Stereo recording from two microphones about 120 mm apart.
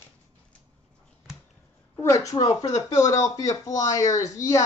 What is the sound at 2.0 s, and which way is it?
Speech, 25° left (ahead or behind).